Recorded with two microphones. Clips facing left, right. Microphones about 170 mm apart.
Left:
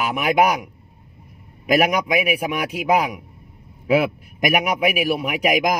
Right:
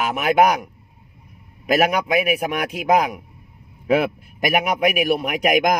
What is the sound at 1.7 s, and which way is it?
Speech, 10° left (ahead or behind).